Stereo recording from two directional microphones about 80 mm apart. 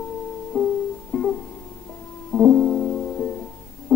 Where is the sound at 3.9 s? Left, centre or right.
Left.